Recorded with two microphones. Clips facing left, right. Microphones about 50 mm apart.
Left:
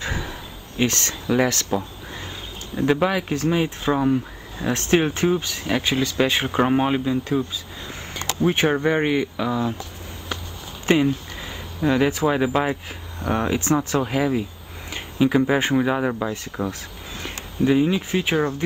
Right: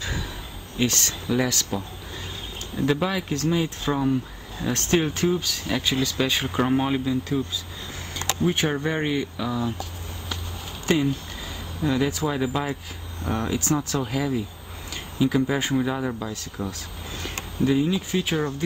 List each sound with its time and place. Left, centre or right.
0.0 s a sound: left
0.8 s speech: left
2.7 s speech: centre
10.9 s speech: left